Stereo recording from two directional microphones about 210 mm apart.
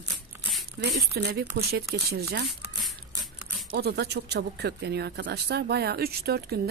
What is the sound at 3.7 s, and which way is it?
Speech, 50° right (ahead or behind).